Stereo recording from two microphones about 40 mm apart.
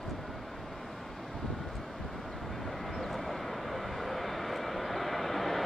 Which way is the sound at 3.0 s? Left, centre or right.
Centre.